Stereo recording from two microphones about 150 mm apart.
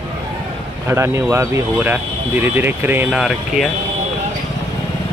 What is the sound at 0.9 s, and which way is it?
Speech, 15° right (ahead or behind).